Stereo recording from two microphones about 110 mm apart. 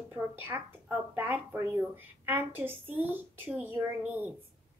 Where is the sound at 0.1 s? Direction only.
20° right (ahead or behind).